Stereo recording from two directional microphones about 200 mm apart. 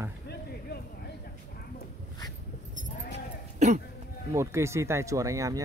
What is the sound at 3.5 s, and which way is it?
Throat clearing, 35° right (ahead or behind).